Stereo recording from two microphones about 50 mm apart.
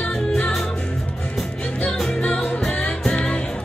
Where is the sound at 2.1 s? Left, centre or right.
Left.